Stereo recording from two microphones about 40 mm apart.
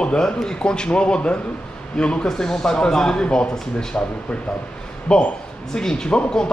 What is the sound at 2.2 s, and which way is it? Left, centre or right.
Speech, centre.